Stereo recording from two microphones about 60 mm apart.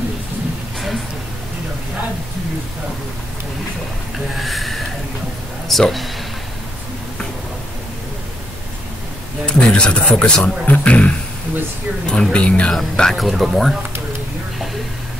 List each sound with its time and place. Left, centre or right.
4.4 s a sound: centre
5.7 s speech: centre
9.5 s speech: centre
12.7 s speech: centre